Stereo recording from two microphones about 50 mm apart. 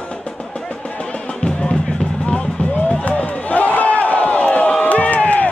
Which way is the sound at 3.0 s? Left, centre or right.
Left.